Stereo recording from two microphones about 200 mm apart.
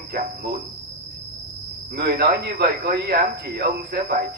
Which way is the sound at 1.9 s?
55° right (ahead or behind).